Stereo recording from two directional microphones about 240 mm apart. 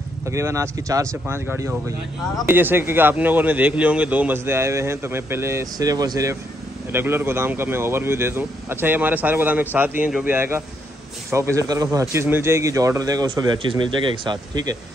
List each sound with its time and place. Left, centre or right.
0.3 s speech: centre